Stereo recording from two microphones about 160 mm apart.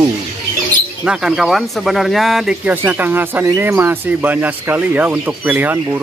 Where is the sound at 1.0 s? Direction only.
5° right (ahead or behind).